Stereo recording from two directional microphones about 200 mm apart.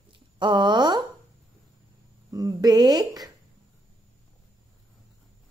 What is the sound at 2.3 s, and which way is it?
A woman's voice, 15° right (ahead or behind).